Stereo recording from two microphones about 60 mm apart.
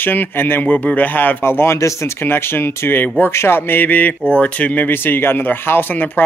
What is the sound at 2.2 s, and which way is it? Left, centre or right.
Speech, left.